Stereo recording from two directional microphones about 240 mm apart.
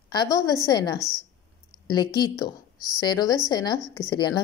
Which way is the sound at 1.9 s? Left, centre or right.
Centre.